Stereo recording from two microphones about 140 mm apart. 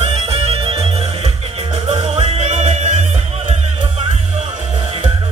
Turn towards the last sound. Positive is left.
turn(degrees=-55)  # may be behind; listen again after turning